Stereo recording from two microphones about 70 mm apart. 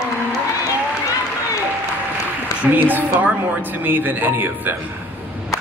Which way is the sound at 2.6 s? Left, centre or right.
Right.